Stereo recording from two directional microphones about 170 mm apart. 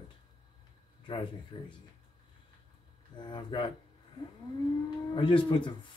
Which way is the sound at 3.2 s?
30° left (ahead or behind).